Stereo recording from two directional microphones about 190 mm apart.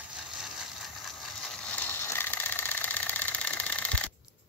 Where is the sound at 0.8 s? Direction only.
Centre (ahead or behind).